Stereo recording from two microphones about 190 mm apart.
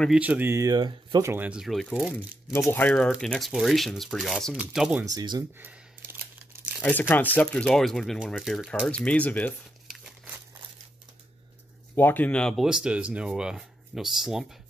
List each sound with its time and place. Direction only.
0.0 s speech: 5° right (ahead or behind)
5.1 s speech: 25° right (ahead or behind)
5.6 s a sound: 10° right (ahead or behind)
6.8 s speech: 10° left (ahead or behind)
9.8 s crumpling: centre (ahead or behind)
11.9 s speech: 10° left (ahead or behind)